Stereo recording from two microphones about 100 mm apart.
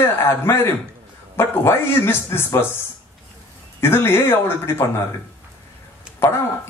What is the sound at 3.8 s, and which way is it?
A man's voice, 25° left (ahead or behind).